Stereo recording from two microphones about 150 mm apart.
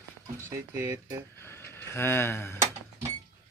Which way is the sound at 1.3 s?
15° left (ahead or behind).